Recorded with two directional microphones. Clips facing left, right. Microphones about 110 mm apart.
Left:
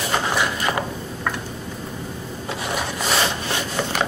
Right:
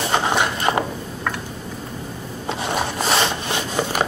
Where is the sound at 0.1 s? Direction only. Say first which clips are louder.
Right 2 dB; 25° right (ahead or behind).